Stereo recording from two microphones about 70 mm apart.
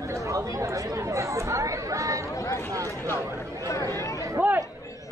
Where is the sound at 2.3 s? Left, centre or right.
Left.